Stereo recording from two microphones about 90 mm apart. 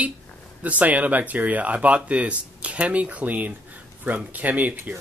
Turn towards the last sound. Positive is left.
turn(degrees=-20)  # may be behind; listen again after turning